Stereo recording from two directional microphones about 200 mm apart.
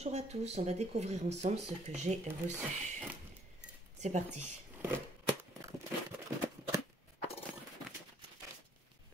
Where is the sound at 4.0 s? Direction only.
35° right (ahead or behind).